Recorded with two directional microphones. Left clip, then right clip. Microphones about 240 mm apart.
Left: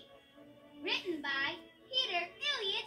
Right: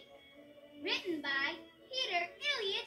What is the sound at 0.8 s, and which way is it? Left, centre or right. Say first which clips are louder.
Music: even; centre.